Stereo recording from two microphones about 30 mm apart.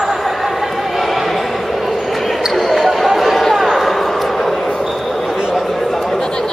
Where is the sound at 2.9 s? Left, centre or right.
Centre.